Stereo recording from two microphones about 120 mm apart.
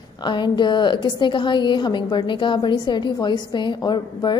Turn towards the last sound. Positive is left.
turn(degrees=35)  # may be behind; listen again after turning